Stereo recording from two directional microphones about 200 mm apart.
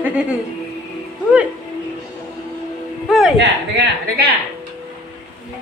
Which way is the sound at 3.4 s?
60° right (ahead or behind).